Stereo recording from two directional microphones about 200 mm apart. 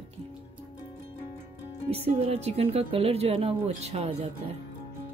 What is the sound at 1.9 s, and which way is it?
A woman's voice, 30° right (ahead or behind).